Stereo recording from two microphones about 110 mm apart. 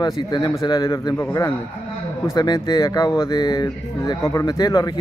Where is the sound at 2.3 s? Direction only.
40° left (ahead or behind).